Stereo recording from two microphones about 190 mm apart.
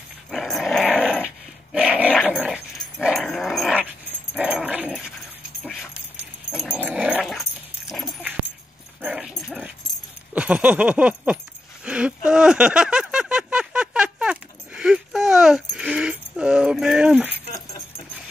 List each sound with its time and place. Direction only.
0.3 s dog: centre (ahead or behind)
11.8 s a sound: 5° right (ahead or behind)
17.5 s dog: 35° left (ahead or behind)